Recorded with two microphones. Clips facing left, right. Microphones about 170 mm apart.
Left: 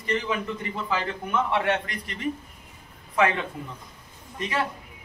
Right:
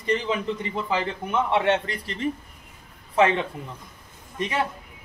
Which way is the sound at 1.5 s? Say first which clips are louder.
Right 3 dB; 25° right (ahead or behind).